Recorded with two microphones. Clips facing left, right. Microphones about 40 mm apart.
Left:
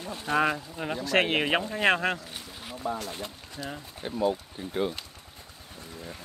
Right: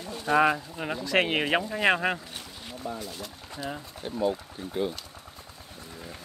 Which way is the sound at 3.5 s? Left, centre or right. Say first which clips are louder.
Right 4 dB; centre.